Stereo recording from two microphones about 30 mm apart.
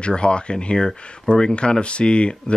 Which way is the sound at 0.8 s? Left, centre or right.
Left.